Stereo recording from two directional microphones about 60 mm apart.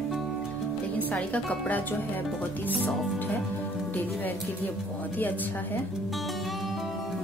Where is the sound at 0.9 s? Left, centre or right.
Left.